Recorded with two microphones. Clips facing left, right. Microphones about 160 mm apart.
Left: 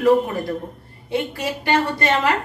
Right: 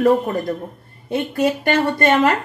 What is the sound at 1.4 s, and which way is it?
Speech, 50° right (ahead or behind).